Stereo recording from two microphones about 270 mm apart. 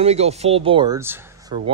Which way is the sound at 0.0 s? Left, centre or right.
Right.